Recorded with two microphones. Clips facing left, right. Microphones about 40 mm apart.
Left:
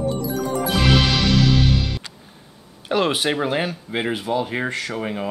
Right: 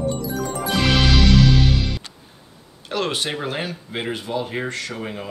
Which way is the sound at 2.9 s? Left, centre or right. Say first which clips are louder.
Left 4 dB; centre.